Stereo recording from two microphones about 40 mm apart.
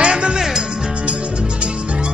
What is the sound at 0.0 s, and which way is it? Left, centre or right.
Music, right.